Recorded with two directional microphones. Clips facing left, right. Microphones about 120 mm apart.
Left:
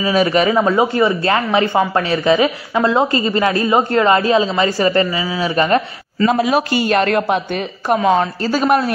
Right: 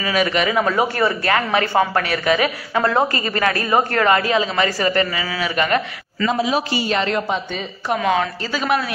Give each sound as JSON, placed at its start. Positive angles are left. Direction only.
{"t": 0.0, "sound": "a woman's voice", "side_deg": 35}
{"t": 0.7, "sound": "a man's voice", "side_deg": 20}
{"t": 5.6, "sound": "speech", "side_deg": 30}
{"t": 6.2, "sound": "a man's voice", "side_deg": 55}
{"t": 7.9, "sound": "a woman's voice", "side_deg": 35}